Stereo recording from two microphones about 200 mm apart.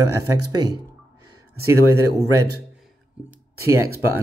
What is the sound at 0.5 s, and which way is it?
Speech, 20° right (ahead or behind).